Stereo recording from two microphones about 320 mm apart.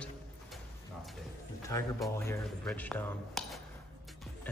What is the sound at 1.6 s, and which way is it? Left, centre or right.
A man's voice, centre.